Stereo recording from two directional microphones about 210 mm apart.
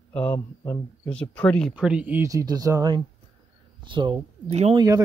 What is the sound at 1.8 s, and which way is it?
Speech, 5° right (ahead or behind).